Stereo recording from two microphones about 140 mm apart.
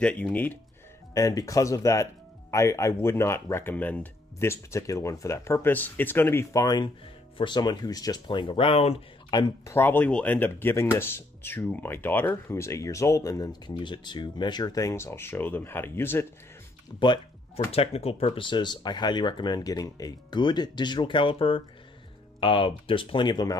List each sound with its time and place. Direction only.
0.0 s speech: 10° left (ahead or behind)
1.1 s speech: 25° left (ahead or behind); by 9.0 s 45° left (ahead or behind)
9.3 s speech: 30° left (ahead or behind)
9.8 s speech: 15° left (ahead or behind)
17.6 s speech: 45° left (ahead or behind); by 23.5 s 30° left (ahead or behind)